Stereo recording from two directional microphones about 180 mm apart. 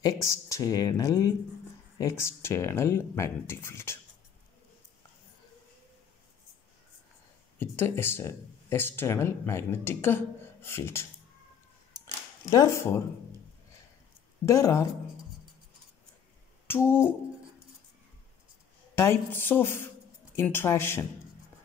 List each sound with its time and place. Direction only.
0.0 s speech: 15° left (ahead or behind)
7.5 s speech: 10° left (ahead or behind)
12.4 s speech: 15° left (ahead or behind)
14.4 s speech: 15° left (ahead or behind)
16.6 s a sound: 15° left (ahead or behind)
18.9 s speech: 15° left (ahead or behind)